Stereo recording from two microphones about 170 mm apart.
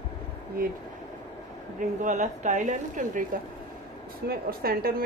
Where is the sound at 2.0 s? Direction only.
45° right (ahead or behind).